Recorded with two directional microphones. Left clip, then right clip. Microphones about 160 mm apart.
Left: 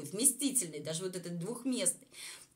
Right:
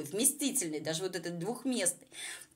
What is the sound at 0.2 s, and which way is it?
A woman's voice, 20° right (ahead or behind).